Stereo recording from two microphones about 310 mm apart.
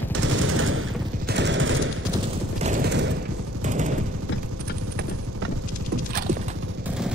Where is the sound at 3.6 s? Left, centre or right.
Right.